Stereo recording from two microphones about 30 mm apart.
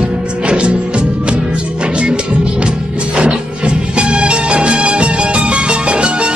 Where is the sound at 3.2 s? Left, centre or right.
Right.